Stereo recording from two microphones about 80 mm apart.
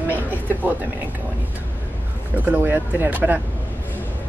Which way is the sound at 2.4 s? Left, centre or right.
Right.